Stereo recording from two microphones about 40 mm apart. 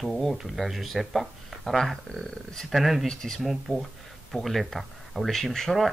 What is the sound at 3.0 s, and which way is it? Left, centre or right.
Speech, centre.